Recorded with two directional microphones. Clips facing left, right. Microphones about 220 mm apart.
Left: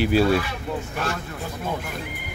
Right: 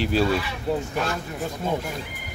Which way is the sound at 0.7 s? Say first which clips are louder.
Right 7 dB; 30° right (ahead or behind).